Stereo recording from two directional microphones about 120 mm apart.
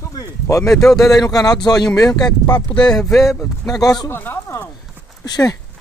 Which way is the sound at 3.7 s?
30° left (ahead or behind).